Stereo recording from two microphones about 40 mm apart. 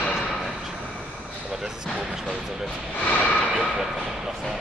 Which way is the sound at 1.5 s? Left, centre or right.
Centre.